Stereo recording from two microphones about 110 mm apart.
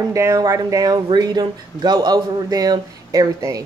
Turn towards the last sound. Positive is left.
turn(degrees=-35)  # may be behind; listen again after turning